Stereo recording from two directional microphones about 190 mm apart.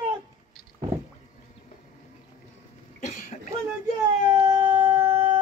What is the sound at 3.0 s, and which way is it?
Cough, 40° left (ahead or behind).